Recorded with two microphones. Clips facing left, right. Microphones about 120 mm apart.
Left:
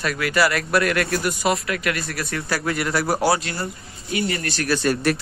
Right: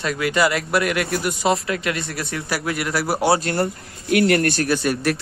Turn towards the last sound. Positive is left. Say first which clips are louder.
# left 1 dB
turn(degrees=0)  # may be behind; listen again after turning